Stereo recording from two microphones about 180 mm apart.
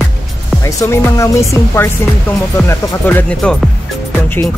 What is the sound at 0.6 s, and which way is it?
Music, 15° left (ahead or behind).